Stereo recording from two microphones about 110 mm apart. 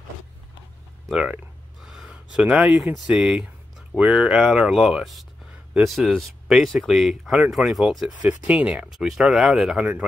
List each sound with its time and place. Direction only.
1.0 s speech: 5° right (ahead or behind)